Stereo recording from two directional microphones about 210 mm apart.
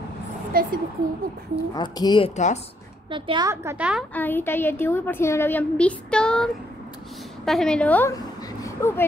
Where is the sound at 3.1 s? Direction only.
20° right (ahead or behind); by 4.0 s 5° right (ahead or behind).